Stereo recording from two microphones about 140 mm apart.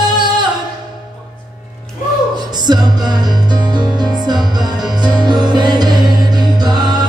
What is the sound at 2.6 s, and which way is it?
Music, 30° right (ahead or behind).